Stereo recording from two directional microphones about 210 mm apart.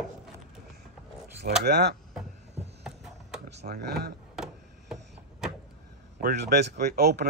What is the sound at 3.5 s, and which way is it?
Speech, 50° right (ahead or behind).